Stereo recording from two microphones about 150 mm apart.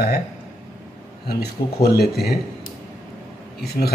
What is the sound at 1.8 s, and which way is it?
Speech, 90° left.